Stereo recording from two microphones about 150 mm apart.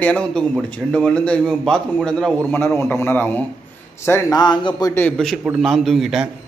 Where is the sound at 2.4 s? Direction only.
15° left (ahead or behind).